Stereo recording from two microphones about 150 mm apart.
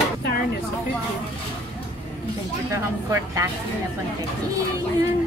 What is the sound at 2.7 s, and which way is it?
Speech, 20° right (ahead or behind).